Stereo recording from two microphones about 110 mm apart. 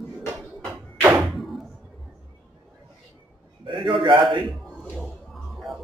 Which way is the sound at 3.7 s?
50° right (ahead or behind).